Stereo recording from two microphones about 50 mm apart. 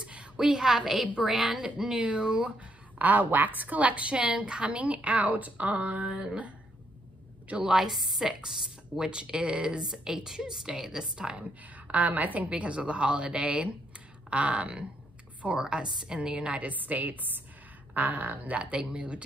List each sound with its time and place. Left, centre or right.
0.0 s a woman's voice: right
2.0 s speech: right
7.6 s speech: centre
7.9 s speech: centre
11.7 s a woman's voice: right
18.6 s speech: right